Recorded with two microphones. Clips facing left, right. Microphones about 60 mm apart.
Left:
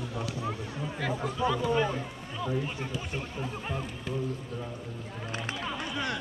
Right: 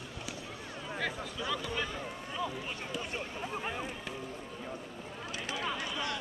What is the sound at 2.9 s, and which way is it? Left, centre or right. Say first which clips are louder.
Speech: left 2 dB; centre.